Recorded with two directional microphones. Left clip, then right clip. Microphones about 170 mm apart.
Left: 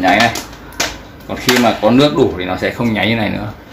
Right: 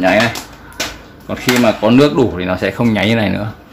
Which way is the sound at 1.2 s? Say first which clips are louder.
Even; 65° right (ahead or behind).